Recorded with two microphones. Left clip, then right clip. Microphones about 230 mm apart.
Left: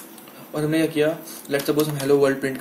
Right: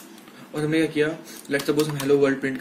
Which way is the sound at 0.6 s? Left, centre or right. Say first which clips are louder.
Left 1 dB; centre.